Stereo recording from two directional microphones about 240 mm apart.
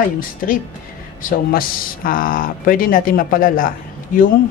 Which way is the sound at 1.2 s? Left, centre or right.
Left.